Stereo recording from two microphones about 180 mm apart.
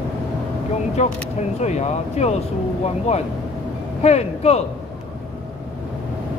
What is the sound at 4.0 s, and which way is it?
Speech, 35° left (ahead or behind).